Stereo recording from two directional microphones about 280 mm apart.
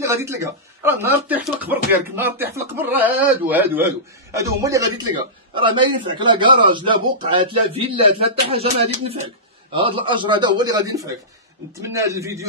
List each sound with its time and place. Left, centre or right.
0.0 s a man's voice: centre